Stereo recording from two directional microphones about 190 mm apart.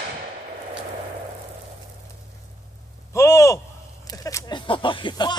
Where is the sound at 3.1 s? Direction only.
15° left (ahead or behind).